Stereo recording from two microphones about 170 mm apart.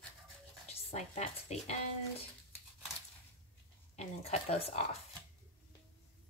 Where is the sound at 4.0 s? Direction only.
35° left (ahead or behind).